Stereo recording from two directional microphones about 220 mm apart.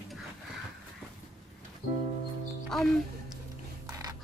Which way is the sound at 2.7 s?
Centre (ahead or behind).